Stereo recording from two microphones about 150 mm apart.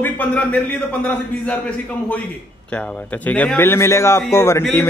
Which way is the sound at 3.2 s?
10° left (ahead or behind).